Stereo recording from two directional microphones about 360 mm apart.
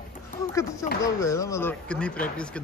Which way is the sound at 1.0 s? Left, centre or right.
Centre.